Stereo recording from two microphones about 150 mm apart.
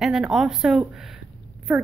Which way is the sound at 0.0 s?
5° right (ahead or behind).